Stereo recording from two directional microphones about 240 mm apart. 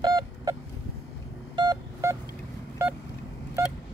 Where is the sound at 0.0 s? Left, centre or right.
Centre.